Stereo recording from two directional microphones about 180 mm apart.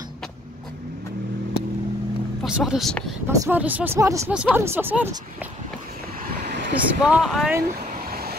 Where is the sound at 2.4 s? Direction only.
5° right (ahead or behind).